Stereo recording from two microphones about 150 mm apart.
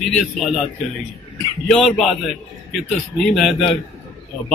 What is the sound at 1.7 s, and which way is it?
Speech, 5° left (ahead or behind).